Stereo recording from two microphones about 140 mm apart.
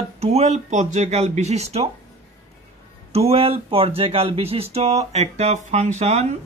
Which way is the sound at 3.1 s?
45° right (ahead or behind).